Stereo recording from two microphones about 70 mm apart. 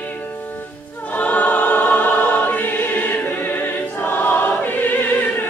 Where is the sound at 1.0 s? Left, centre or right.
Left.